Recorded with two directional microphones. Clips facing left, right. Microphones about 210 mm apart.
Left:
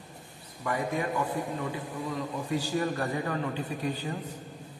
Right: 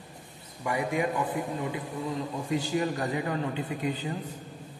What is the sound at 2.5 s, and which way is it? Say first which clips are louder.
A man's voice: right 1 dB; 20° right (ahead or behind).